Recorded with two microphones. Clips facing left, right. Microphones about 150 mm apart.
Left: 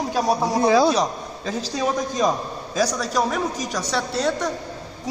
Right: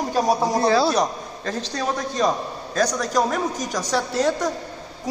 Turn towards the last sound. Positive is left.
turn(degrees=0)  # may be behind; listen again after turning